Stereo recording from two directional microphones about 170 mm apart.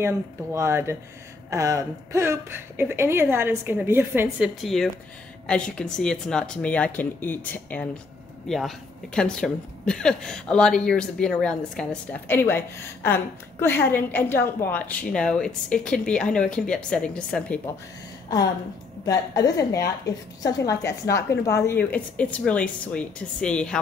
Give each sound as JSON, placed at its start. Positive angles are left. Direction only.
{"t": 0.0, "sound": "a woman's voice", "side_deg": -15}
{"t": 4.6, "sound": "a woman's voice", "side_deg": 0}
{"t": 19.0, "sound": "a woman's voice", "side_deg": 20}